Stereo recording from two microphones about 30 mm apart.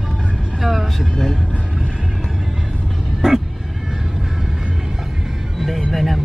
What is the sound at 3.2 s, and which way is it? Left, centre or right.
Vehicle, centre.